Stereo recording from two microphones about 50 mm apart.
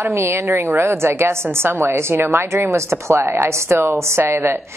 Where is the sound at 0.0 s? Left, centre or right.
Right.